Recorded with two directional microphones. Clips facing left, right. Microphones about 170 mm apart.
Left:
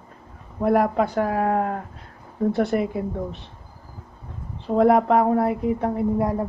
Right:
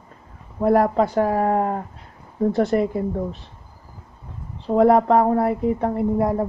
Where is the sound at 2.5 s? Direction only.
5° left (ahead or behind).